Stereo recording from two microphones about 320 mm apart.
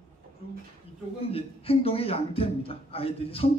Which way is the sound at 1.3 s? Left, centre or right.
Centre.